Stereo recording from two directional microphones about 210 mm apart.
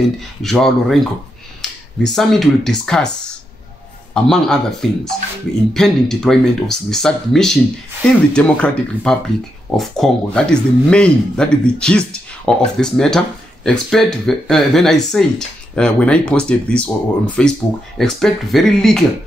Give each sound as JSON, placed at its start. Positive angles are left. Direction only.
{"t": 0.4, "sound": "speech", "side_deg": 0}
{"t": 4.1, "sound": "speech", "side_deg": 0}